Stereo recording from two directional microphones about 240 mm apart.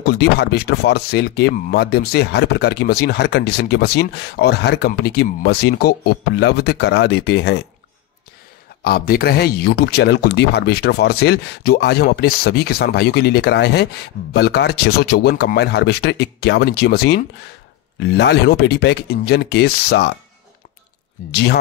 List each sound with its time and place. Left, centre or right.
0.0 s speech: left
8.8 s speech: left
21.3 s speech: left